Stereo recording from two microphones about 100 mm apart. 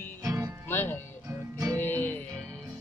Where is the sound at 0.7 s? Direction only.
20° left (ahead or behind).